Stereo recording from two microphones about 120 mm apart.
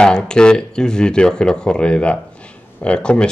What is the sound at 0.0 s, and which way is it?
Speech, 5° left (ahead or behind).